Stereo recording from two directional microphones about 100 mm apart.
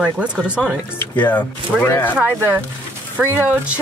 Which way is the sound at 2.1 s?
20° right (ahead or behind).